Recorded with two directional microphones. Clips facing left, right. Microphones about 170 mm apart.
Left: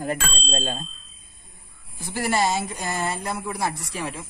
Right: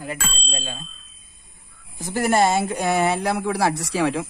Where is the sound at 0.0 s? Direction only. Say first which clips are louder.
Left 3 dB; 45° left (ahead or behind).